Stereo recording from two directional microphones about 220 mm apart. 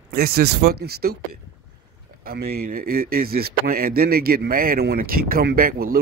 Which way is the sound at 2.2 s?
45° right (ahead or behind).